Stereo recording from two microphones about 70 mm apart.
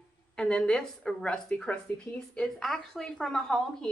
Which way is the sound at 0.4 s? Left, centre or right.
Centre.